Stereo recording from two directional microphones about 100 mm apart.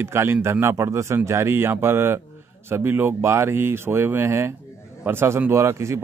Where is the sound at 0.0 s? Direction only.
25° right (ahead or behind).